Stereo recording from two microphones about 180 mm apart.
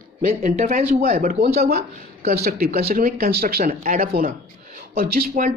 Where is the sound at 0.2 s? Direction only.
45° right (ahead or behind).